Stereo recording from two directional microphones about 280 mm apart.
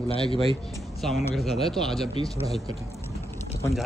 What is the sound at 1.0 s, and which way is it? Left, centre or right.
A man's voice, centre.